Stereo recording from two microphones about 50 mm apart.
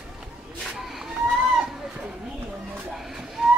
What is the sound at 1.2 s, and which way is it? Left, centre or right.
Chicken, centre.